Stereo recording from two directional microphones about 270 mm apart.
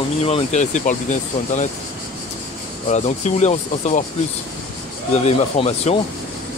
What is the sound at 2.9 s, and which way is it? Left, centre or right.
Speech, left.